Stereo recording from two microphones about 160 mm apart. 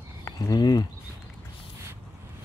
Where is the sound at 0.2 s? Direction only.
25° left (ahead or behind).